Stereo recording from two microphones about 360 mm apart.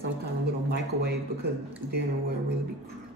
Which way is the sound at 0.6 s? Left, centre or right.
Right.